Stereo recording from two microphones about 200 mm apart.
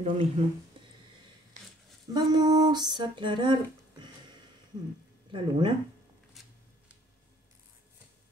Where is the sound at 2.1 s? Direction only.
20° right (ahead or behind).